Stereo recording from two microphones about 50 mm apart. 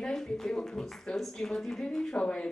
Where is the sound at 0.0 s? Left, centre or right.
Centre.